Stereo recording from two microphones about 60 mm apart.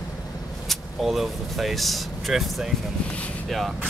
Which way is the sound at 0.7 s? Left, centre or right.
Centre.